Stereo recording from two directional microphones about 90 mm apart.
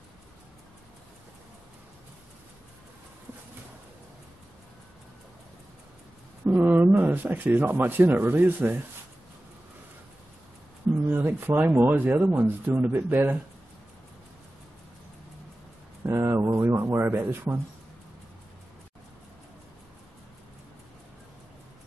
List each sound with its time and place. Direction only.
6.4 s speech: 20° right (ahead or behind)
11.1 s speech: 25° right (ahead or behind)
16.0 s a sound: 30° right (ahead or behind)
16.6 s speech: 30° right (ahead or behind)